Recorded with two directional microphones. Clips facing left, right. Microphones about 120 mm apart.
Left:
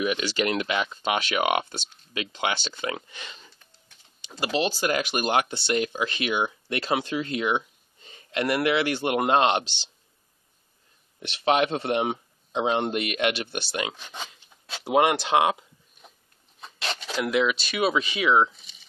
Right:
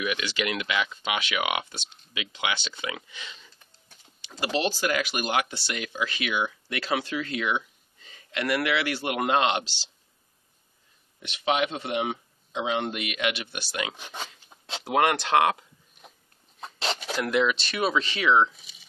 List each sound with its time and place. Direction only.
0.0 s speech: 35° left (ahead or behind)
4.7 s speech: 30° left (ahead or behind)
11.4 s speech: 45° left (ahead or behind)
14.9 s speech: 15° left (ahead or behind)
16.7 s a sound: 30° right (ahead or behind)
17.2 s speech: 5° left (ahead or behind)